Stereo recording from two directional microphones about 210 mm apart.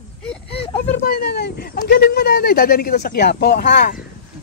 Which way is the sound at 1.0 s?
50° left (ahead or behind).